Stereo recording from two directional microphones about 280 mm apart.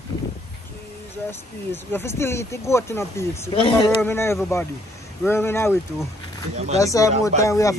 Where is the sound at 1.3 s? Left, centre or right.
Centre.